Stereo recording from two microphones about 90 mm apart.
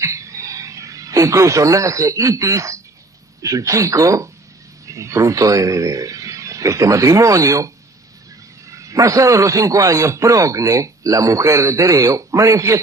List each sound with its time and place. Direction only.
0.0 s a sound: 35° right (ahead or behind)
3.4 s a man's voice: 35° right (ahead or behind)
8.7 s a man's voice: 35° right (ahead or behind)